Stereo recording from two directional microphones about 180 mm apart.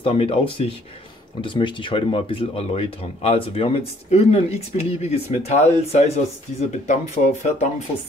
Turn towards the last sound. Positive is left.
turn(degrees=40)  # may be behind; listen again after turning